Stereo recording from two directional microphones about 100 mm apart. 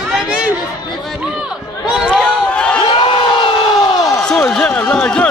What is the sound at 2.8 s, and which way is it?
Crowd, 55° left (ahead or behind).